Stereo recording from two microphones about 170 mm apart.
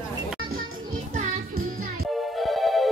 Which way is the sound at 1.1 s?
55° right (ahead or behind).